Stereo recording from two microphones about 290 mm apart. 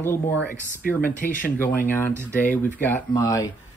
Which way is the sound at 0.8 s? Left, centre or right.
Left.